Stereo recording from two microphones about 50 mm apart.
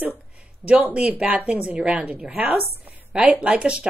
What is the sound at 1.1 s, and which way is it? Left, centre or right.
A woman's voice, right.